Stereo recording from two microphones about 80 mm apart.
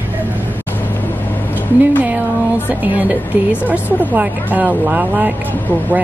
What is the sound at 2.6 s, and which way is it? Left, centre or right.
Speech, right.